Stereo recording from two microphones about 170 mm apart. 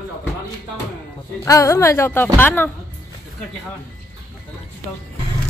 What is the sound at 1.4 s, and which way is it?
Speech, 15° left (ahead or behind).